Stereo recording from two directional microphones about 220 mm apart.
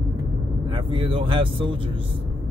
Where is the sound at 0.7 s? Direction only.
25° right (ahead or behind).